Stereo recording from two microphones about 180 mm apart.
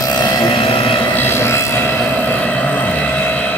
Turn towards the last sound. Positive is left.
turn(degrees=10)  # may be behind; listen again after turning